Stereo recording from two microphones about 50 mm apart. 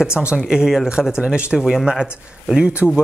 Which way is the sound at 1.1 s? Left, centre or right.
Right.